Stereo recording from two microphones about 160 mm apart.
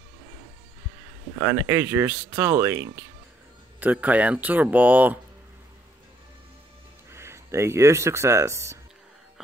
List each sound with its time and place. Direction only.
1.4 s speech: 15° right (ahead or behind)
7.1 s speech: 15° right (ahead or behind)